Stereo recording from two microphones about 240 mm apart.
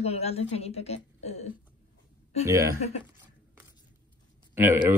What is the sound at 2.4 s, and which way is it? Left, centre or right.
Speech, centre.